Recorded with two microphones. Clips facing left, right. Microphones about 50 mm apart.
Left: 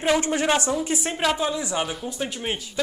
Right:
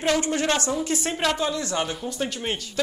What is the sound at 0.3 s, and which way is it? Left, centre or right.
Speech, centre.